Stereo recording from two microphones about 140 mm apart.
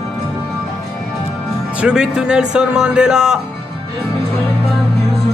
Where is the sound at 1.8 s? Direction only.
5° right (ahead or behind).